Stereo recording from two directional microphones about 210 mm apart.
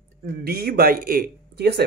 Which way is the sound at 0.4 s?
50° right (ahead or behind).